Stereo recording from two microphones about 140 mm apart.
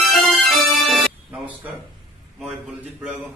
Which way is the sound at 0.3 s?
Centre (ahead or behind).